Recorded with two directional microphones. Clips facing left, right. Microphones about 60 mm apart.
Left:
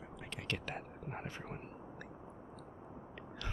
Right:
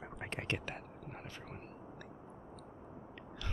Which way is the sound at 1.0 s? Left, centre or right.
Left.